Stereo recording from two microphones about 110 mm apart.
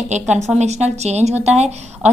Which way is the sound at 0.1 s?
90° right.